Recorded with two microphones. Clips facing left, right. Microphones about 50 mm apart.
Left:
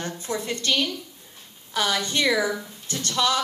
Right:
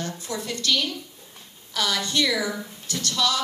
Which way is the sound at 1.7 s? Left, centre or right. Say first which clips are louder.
Left 1 dB; left.